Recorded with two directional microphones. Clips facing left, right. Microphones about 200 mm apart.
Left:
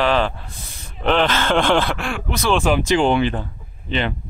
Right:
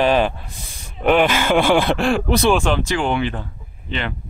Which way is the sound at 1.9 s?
35° right (ahead or behind).